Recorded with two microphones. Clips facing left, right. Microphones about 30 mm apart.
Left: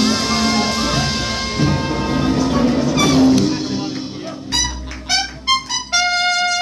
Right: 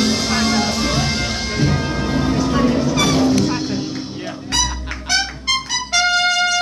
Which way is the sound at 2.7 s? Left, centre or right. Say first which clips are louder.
Left 2 dB; centre.